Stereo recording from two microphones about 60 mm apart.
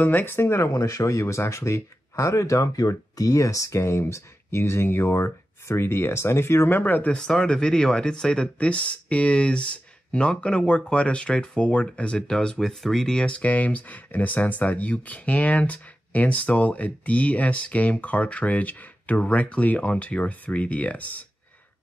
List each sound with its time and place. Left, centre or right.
0.0 s speech: left
0.7 s speech: left
6.7 s speech: left
7.2 s speech: centre
13.2 s speech: left